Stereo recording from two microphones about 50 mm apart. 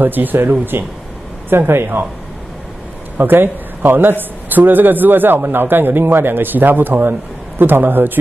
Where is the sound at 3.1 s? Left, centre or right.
Right.